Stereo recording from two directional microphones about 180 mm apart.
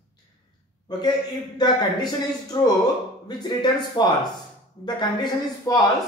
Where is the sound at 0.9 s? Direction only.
25° left (ahead or behind).